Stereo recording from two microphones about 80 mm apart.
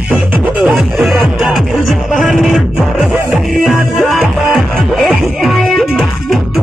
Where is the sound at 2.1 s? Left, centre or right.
Centre.